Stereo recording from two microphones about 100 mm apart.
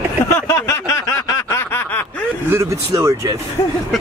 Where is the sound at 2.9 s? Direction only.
40° right (ahead or behind).